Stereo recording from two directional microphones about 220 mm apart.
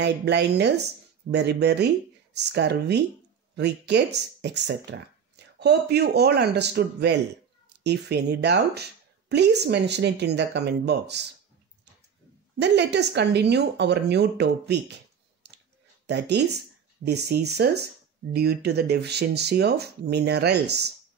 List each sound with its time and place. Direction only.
0.0 s speech: 50° right (ahead or behind)
12.5 s speech: 50° right (ahead or behind)
15.4 s clicking: 50° right (ahead or behind)
16.1 s speech: 50° right (ahead or behind)